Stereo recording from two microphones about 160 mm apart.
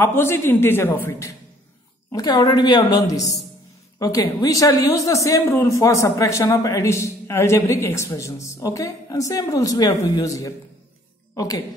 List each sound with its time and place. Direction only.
0.0 s a man's voice: 15° left (ahead or behind)
2.1 s a woman's voice: 25° left (ahead or behind)